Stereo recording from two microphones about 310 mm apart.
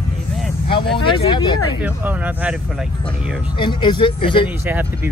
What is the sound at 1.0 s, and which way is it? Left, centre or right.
Speech, centre.